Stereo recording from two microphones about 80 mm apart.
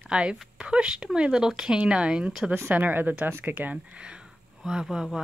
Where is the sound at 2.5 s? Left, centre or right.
Right; by 5.2 s centre.